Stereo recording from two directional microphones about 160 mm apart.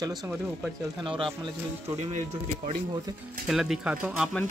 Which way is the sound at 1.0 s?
30° right (ahead or behind).